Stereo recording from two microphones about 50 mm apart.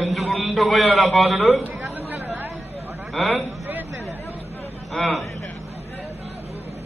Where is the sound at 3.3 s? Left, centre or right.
Right.